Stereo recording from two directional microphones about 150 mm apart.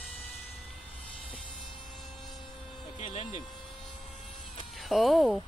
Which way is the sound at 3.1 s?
35° left (ahead or behind).